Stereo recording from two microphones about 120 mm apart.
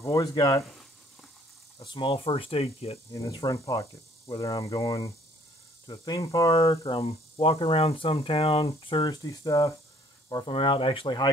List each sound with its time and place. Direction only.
0.1 s speech: 35° left (ahead or behind)
1.8 s speech: 40° left (ahead or behind)
3.1 s speech: 30° left (ahead or behind)
6.9 s speech: 50° left (ahead or behind)
9.1 s speech: 30° left (ahead or behind)
10.3 s speech: 45° left (ahead or behind)